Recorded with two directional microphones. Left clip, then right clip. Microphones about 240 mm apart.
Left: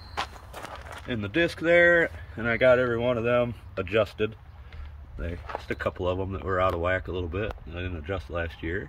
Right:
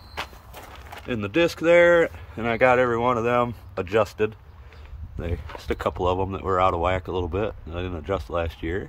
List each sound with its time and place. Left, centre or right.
1.0 s speech: centre
5.7 s speech: centre